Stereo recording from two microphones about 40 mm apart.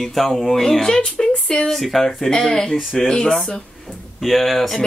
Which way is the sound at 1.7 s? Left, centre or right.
Centre.